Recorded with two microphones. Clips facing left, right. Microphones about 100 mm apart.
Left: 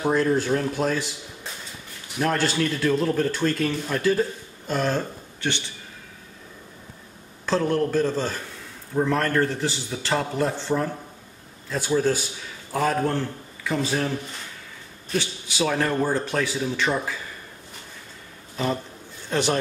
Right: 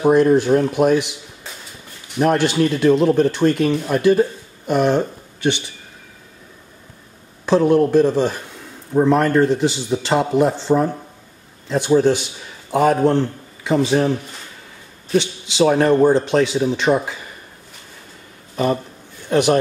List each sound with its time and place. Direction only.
0.0 s speech: 20° right (ahead or behind)
2.2 s speech: 20° right (ahead or behind)
7.4 s a man's voice: 15° right (ahead or behind)
15.1 s a man's voice: 20° right (ahead or behind)
19.2 s a man's voice: 15° right (ahead or behind)